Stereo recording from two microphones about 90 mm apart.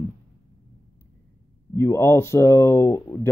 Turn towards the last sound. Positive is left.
turn(degrees=35)  # may be behind; listen again after turning